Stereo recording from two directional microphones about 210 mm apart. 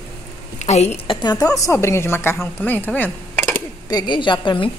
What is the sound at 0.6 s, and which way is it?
Speech, 30° left (ahead or behind).